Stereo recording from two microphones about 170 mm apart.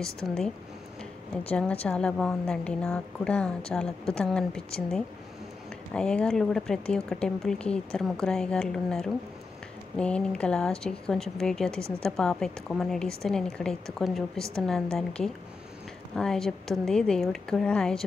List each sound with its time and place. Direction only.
0.0 s speech: 5° left (ahead or behind)
1.5 s a woman's voice: 10° left (ahead or behind)